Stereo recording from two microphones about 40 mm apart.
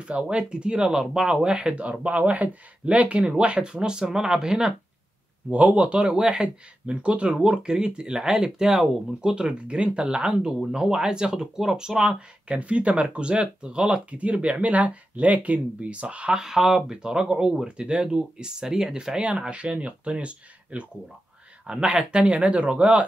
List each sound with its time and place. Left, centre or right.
0.3 s speech: right
1.8 s speech: right; by 4.7 s centre
5.5 s speech: right; by 9.3 s centre
9.3 s speech: right
12.4 s speech: right
16.3 s speech: centre; by 23.0 s right